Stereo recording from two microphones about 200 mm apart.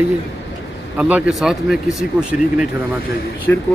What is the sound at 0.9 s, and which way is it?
A man's voice, 5° right (ahead or behind).